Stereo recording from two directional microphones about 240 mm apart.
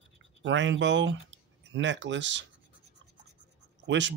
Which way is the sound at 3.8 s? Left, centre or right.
Right.